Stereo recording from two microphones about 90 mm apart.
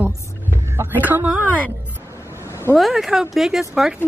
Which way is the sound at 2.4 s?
30° left (ahead or behind).